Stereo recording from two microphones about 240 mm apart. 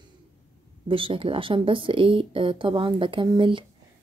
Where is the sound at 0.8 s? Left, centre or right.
Right.